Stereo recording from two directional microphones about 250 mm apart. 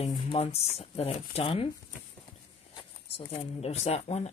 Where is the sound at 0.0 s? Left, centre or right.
Left.